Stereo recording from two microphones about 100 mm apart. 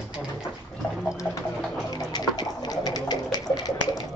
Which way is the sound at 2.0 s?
40° left (ahead or behind).